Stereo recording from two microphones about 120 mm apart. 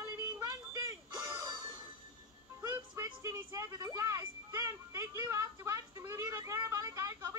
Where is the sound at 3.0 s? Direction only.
25° right (ahead or behind).